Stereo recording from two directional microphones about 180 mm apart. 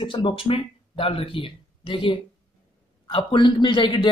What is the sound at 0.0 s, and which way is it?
A man's voice, 25° left (ahead or behind).